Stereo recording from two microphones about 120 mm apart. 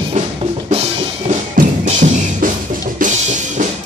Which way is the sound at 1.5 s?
90° right.